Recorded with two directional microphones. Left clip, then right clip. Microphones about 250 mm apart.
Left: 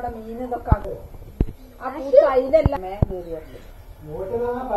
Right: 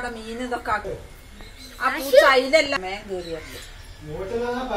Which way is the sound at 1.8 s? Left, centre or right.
Right.